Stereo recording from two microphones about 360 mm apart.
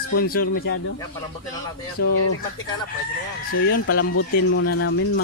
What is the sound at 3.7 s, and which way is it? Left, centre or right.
Speech, left.